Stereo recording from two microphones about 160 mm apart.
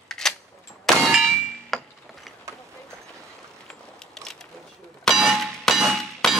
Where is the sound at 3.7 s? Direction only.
5° left (ahead or behind).